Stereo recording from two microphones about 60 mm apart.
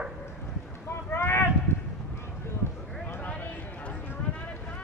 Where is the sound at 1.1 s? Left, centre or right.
Left.